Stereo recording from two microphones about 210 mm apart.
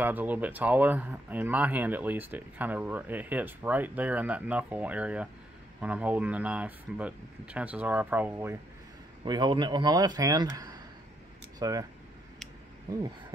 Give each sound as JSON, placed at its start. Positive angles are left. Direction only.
{"t": 0.0, "sound": "speech", "side_deg": -10}
{"t": 9.2, "sound": "speech", "side_deg": -20}